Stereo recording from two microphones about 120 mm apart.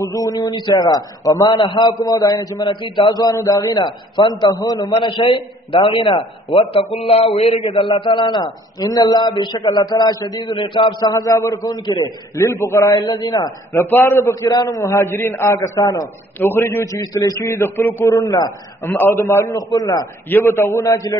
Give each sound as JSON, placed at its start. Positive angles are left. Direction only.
{"t": 0.0, "sound": "a man's voice", "side_deg": 30}
{"t": 12.4, "sound": "a man's voice", "side_deg": 20}
{"t": 13.0, "sound": "a man's voice", "side_deg": 35}
{"t": 13.8, "sound": "a man's voice", "side_deg": 20}
{"t": 16.3, "sound": "a man's voice", "side_deg": 15}
{"t": 18.8, "sound": "a man's voice", "side_deg": 20}
{"t": 20.2, "sound": "a man's voice", "side_deg": 20}